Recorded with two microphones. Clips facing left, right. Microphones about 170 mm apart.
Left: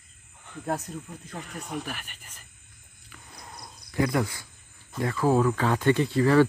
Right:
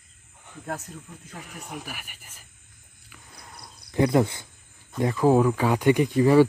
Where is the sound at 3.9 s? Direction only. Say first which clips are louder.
Right 5 dB; 25° right (ahead or behind).